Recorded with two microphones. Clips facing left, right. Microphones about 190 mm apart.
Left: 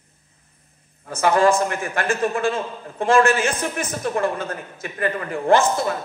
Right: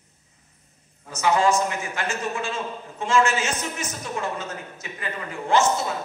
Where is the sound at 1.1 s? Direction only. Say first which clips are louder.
Left 4 dB; 55° left (ahead or behind).